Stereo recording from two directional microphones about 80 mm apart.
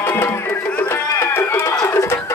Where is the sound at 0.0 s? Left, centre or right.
Left.